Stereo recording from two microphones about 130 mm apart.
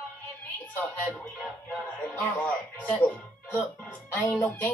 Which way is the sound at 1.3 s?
10° left (ahead or behind).